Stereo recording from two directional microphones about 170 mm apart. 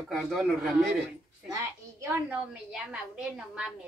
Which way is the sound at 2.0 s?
10° right (ahead or behind).